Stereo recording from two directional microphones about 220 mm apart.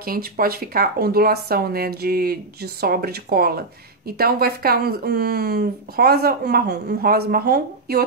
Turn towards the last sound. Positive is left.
turn(degrees=-45)  # may be behind; listen again after turning